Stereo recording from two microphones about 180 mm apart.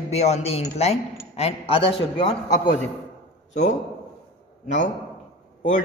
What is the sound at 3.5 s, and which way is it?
Speech, 40° left (ahead or behind).